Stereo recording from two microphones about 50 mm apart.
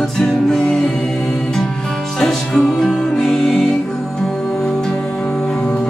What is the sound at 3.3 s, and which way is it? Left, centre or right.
Music, centre.